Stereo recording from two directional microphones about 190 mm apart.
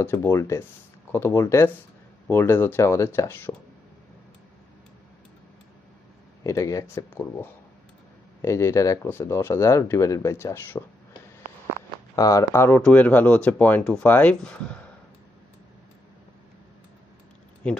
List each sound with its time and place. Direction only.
0.0 s speech: 10° left (ahead or behind)
6.4 s speech: 15° left (ahead or behind)
12.2 s speech: 20° left (ahead or behind)